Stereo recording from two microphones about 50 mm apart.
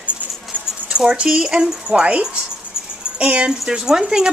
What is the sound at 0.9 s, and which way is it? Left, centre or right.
Speech, centre.